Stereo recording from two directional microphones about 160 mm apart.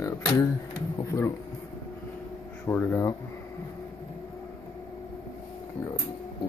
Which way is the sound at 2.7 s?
15° left (ahead or behind).